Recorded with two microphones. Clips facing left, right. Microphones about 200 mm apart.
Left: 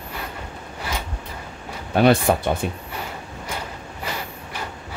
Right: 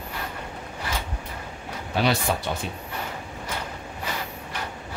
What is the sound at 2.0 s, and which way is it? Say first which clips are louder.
Speech: left 8 dB; 55° left (ahead or behind).